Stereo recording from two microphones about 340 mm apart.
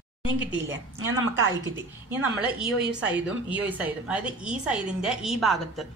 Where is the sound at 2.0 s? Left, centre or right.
Centre.